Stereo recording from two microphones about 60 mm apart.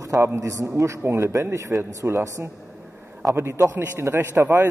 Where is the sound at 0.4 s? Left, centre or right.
Right.